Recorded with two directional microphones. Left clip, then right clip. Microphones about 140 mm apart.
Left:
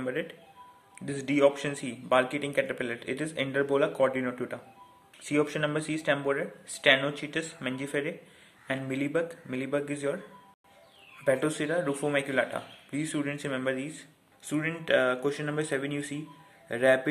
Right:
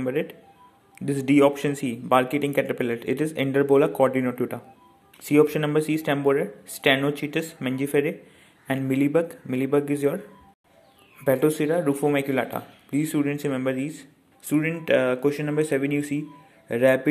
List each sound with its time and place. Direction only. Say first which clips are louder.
0.0 s speech: right 6 dB; 25° right (ahead or behind)
11.2 s speech: right 6 dB; 25° right (ahead or behind)